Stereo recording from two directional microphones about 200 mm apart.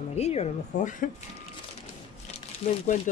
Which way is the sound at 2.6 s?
40° left (ahead or behind).